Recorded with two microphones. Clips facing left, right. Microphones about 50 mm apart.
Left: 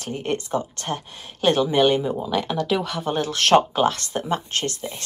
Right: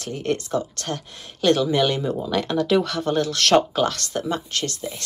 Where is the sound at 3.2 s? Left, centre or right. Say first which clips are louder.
Left 1 dB; left.